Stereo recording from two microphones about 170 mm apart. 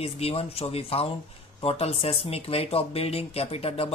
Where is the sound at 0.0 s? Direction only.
35° left (ahead or behind).